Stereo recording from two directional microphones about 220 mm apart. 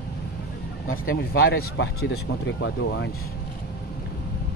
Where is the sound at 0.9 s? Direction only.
40° left (ahead or behind).